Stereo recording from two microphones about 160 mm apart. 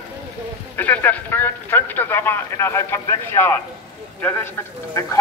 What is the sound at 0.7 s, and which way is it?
Speech, 10° left (ahead or behind).